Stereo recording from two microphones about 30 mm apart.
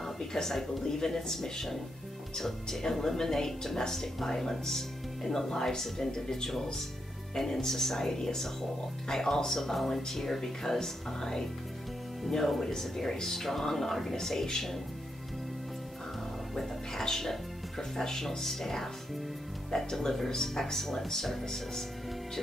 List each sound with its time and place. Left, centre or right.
0.0 s speech: centre
16.5 s speech: centre